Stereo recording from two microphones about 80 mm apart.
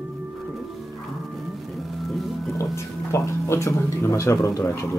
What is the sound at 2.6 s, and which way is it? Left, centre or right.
Speech, left.